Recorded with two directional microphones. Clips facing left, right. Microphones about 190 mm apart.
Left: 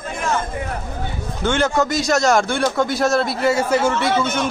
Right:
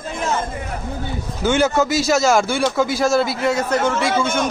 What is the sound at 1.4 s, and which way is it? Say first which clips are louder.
A man's voice: right 2 dB; 5° right (ahead or behind).